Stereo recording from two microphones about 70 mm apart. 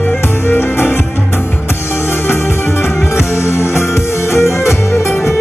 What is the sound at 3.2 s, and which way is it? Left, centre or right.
Music, left.